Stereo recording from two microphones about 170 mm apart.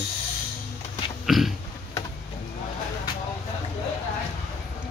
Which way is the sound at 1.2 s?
Centre (ahead or behind).